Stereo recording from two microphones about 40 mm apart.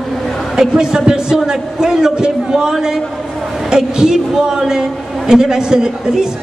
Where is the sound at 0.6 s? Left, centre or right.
Centre.